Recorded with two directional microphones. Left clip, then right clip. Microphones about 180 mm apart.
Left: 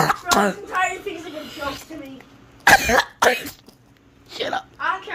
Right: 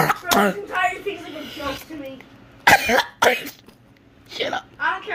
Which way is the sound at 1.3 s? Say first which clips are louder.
Even; centre (ahead or behind).